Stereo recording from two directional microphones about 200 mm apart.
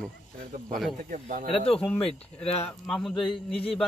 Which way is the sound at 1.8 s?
5° left (ahead or behind).